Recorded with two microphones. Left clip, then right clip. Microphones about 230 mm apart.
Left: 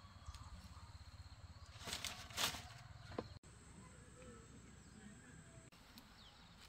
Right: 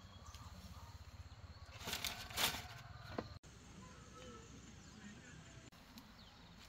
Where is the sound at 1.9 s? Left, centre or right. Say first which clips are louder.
Right 3 dB; right.